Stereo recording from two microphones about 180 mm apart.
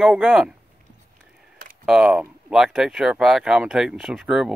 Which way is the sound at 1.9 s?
Centre (ahead or behind).